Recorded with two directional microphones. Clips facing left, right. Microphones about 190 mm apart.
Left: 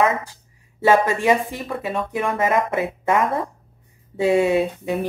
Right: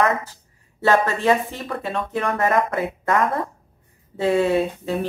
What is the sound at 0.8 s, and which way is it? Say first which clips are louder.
A woman's voice: left 1 dB; 15° left (ahead or behind).